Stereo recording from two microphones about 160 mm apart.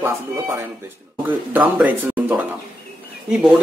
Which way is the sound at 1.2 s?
10° right (ahead or behind).